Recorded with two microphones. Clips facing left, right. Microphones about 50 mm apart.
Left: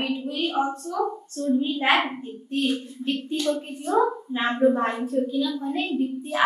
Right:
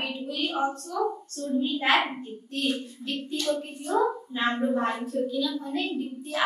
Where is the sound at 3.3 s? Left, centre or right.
Centre.